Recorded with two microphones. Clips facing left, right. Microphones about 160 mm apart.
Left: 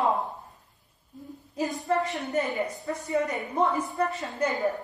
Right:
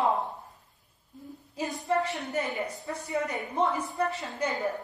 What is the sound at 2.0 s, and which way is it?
Speech, centre (ahead or behind).